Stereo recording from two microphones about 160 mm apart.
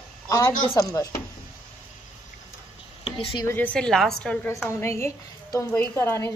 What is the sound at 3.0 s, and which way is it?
Speech, 30° left (ahead or behind).